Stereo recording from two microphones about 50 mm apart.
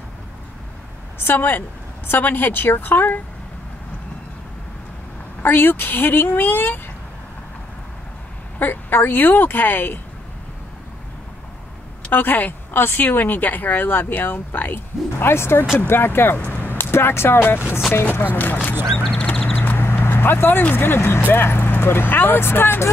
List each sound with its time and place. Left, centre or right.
1.2 s speech: left
5.4 s speech: left
8.5 s speech: left
12.1 s speech: left
16.5 s a sound: left
16.9 s speech: left
18.1 s speech: left
19.5 s horse: left
19.8 s vehicle: left
20.7 s speech: left